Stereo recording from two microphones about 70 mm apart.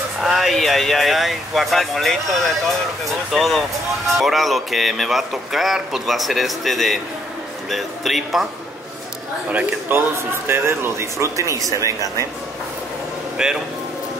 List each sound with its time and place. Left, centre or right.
0.2 s speech: centre
9.5 s speech: right
9.9 s speech: right
13.4 s speech: centre